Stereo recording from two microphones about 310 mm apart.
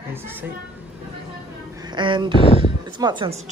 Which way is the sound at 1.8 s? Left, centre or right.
Centre.